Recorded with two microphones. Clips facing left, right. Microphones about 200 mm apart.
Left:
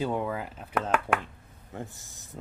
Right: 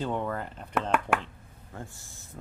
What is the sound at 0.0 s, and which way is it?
Speech, 10° left (ahead or behind).